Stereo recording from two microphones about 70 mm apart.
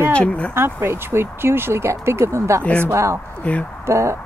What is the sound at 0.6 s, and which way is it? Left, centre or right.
Speech, right.